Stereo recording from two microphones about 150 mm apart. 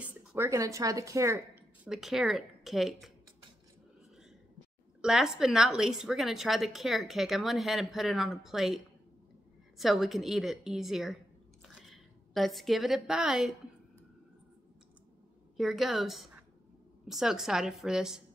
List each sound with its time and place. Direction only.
0.0 s a sound: 10° right (ahead or behind)
0.5 s speech: 20° right (ahead or behind)
1.9 s a woman's voice: centre (ahead or behind)
5.0 s a woman's voice: 5° right (ahead or behind)
15.5 s a woman's voice: centre (ahead or behind)